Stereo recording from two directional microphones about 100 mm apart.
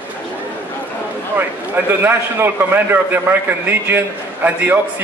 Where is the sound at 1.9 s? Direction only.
20° right (ahead or behind).